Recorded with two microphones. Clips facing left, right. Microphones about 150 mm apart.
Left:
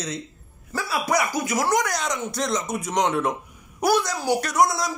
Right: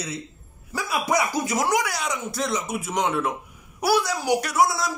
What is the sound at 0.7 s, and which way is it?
Speech, 15° right (ahead or behind).